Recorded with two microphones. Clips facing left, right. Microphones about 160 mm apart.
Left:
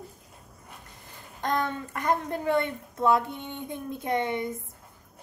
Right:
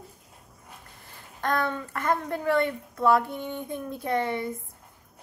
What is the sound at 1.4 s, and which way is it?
A woman's voice, 15° left (ahead or behind).